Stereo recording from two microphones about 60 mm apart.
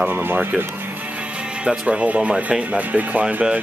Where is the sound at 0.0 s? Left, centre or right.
Right.